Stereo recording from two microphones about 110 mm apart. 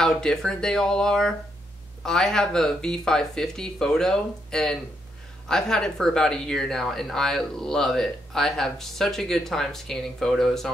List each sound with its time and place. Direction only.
0.0 s speech: 5° left (ahead or behind)